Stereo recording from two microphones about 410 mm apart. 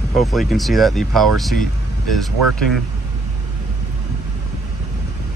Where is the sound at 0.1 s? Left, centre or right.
Centre.